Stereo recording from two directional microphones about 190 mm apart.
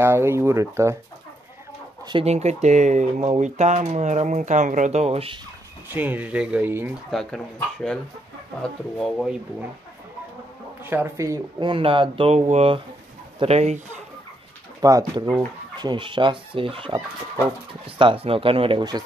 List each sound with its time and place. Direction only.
0.0 s speech: 15° right (ahead or behind)
2.0 s speech: 30° right (ahead or behind)
5.9 s speech: 10° right (ahead or behind)
7.1 s speech: centre (ahead or behind)
10.8 s speech: 10° right (ahead or behind); by 14.0 s 35° right (ahead or behind)
14.8 s speech: 20° right (ahead or behind)